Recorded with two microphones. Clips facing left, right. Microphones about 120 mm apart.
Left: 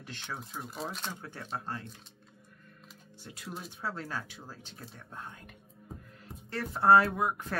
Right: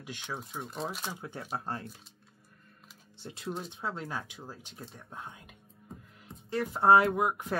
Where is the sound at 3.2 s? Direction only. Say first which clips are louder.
Right 4 dB; 25° right (ahead or behind).